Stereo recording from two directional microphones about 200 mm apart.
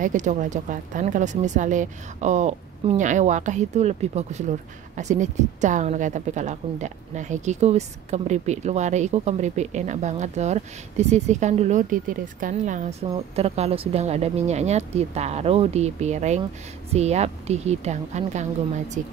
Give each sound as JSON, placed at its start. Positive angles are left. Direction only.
{"t": 0.0, "sound": "a woman's voice", "side_deg": -40}